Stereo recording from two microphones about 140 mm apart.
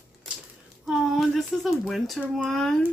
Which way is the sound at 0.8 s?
Centre (ahead or behind).